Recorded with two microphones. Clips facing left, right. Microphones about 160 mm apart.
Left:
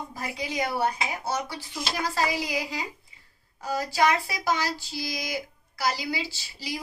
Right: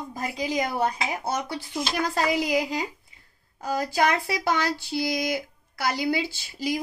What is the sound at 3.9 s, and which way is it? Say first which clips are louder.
A woman's voice: left 1 dB; 60° right (ahead or behind).